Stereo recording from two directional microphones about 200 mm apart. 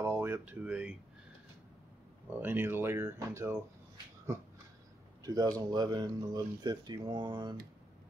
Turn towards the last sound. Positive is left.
turn(degrees=-20)  # may be behind; listen again after turning